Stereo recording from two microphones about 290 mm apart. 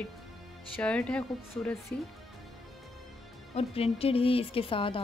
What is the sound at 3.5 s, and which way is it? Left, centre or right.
Speech, left.